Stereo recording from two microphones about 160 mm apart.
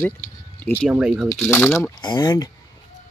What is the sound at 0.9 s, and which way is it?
Speech, 5° right (ahead or behind).